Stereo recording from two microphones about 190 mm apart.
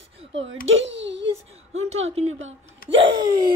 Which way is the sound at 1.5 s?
35° right (ahead or behind).